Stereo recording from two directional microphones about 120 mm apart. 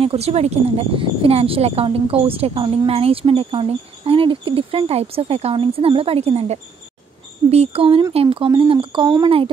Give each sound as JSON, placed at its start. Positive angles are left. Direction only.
{"t": 0.0, "sound": "speech", "side_deg": -55}